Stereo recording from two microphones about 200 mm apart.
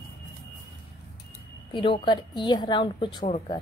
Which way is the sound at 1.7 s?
25° left (ahead or behind).